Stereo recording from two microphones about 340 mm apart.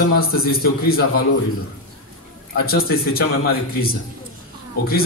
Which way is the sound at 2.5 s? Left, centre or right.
Left.